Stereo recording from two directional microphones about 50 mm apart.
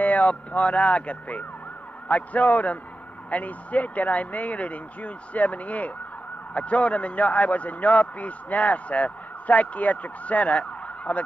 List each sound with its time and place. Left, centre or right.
0.0 s a man's voice: left